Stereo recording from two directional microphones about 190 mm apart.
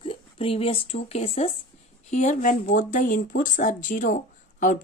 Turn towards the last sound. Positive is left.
turn(degrees=40)  # may be behind; listen again after turning